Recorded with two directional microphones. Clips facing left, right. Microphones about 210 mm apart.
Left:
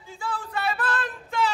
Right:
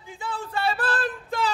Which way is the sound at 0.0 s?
20° right (ahead or behind).